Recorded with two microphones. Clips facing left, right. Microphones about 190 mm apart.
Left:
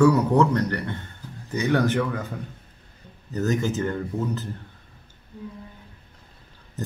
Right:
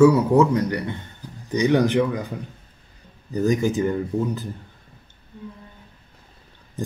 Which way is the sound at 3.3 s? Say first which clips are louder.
Right 4 dB; 10° right (ahead or behind).